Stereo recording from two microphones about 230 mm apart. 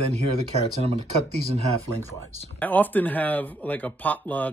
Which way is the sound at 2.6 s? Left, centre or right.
Centre.